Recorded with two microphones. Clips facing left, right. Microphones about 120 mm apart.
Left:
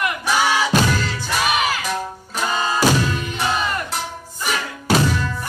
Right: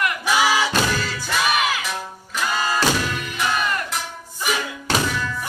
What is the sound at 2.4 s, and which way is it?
Music, 25° left (ahead or behind).